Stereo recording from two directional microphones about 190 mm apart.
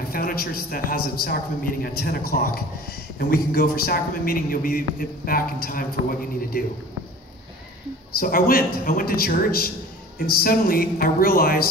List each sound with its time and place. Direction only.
0.1 s a man's voice: 50° left (ahead or behind)
8.2 s a man's voice: 50° left (ahead or behind)